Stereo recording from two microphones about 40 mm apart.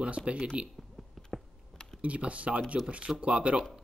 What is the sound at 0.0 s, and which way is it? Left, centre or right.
Speech, right.